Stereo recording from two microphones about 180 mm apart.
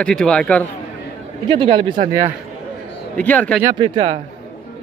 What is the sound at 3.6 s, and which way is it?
Speech, 25° right (ahead or behind).